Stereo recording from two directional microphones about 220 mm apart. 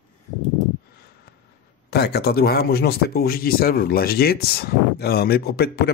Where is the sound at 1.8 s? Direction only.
45° left (ahead or behind).